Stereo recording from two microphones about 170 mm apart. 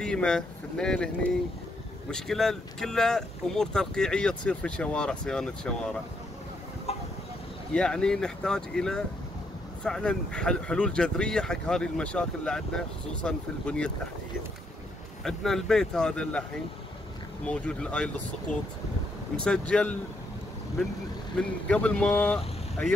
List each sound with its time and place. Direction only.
0.0 s speech: 5° left (ahead or behind)
6.9 s a sound: 35° left (ahead or behind)
7.7 s speech: 5° left (ahead or behind)
15.2 s speech: centre (ahead or behind)
17.5 s speech: 5° left (ahead or behind)
19.4 s speech: 5° left (ahead or behind)
21.4 s speech: 10° left (ahead or behind)